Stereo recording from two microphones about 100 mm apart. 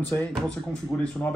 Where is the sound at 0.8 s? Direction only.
10° left (ahead or behind).